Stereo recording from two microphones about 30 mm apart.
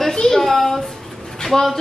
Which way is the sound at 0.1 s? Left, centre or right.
Centre.